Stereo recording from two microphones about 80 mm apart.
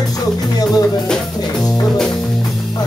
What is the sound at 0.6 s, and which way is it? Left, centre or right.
Music, left.